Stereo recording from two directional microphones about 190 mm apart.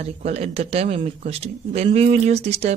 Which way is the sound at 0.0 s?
35° right (ahead or behind).